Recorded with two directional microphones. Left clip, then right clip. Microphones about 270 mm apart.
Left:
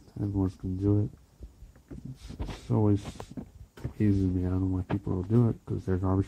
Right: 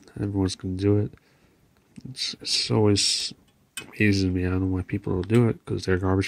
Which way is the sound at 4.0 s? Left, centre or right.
Right.